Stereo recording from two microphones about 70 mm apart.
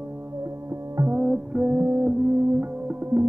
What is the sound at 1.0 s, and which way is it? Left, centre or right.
Music, centre.